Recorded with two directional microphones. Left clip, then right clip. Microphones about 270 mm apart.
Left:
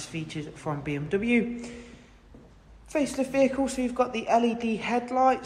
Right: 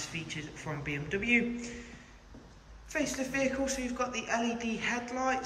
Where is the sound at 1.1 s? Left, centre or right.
Left.